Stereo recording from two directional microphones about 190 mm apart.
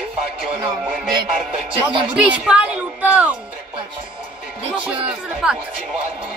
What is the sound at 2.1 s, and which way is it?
Speech, 5° right (ahead or behind).